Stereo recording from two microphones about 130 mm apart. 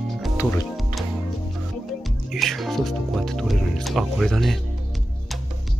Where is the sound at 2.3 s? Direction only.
Centre (ahead or behind).